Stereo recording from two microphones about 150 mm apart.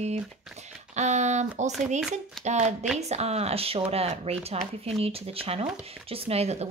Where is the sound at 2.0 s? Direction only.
5° right (ahead or behind).